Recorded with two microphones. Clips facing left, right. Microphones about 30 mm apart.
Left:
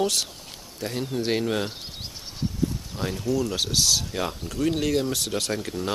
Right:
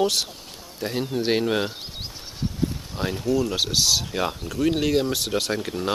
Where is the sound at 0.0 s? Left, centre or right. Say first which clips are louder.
Right 2 dB; centre.